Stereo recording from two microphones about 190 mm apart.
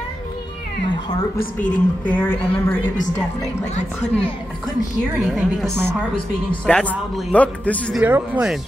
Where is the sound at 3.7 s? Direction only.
35° left (ahead or behind).